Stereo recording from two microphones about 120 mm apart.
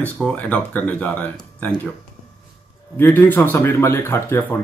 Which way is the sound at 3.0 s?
15° left (ahead or behind).